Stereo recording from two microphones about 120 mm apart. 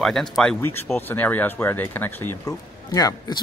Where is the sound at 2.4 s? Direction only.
30° left (ahead or behind).